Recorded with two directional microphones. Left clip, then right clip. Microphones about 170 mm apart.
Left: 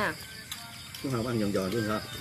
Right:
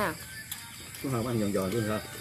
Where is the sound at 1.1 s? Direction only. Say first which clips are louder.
Even; 30° right (ahead or behind).